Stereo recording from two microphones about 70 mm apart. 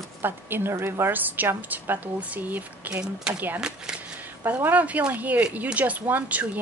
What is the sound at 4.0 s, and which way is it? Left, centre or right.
Speech, right.